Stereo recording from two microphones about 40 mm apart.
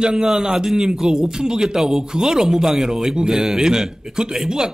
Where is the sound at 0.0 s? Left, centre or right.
Centre.